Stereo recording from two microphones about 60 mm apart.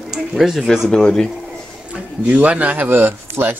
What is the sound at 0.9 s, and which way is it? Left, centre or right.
Speech, centre.